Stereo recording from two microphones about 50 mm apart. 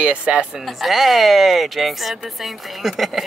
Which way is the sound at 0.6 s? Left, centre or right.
Centre.